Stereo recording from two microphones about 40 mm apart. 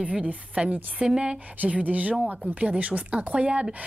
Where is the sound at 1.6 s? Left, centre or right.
Right.